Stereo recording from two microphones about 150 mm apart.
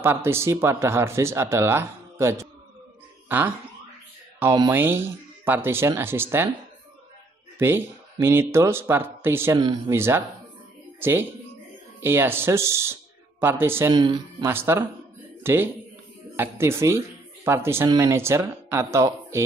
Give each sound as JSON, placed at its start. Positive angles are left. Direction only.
{"t": 0.0, "sound": "speech", "side_deg": -15}
{"t": 4.6, "sound": "speech", "side_deg": -15}
{"t": 7.5, "sound": "a woman's voice", "side_deg": -15}